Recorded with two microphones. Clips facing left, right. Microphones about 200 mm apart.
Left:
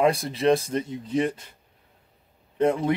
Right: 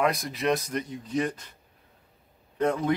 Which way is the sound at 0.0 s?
30° left (ahead or behind).